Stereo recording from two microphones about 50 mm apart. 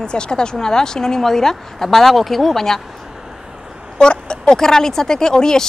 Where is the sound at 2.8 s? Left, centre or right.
Centre.